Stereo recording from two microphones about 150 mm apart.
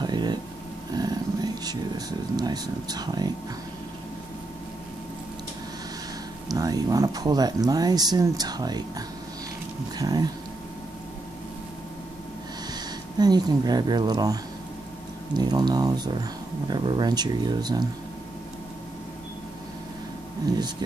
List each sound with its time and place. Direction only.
0.0 s a sound: 30° right (ahead or behind)
0.9 s speech: 25° right (ahead or behind)
6.5 s speech: 25° right (ahead or behind)
12.7 s speech: 25° right (ahead or behind)